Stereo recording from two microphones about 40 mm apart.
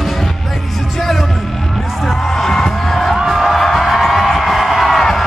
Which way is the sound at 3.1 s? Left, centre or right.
Centre.